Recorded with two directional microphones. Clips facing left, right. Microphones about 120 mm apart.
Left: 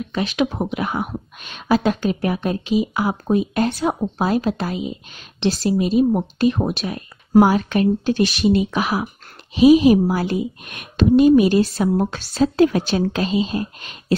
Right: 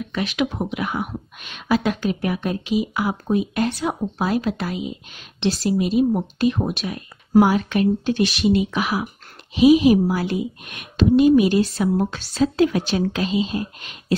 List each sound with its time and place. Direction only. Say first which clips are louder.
0.1 s speech: left 3 dB; 30° left (ahead or behind)